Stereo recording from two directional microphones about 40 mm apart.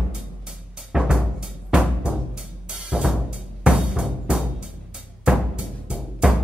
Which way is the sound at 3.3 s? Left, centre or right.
Centre.